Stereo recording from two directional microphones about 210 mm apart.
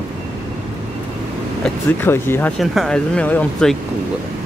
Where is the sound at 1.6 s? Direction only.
10° left (ahead or behind).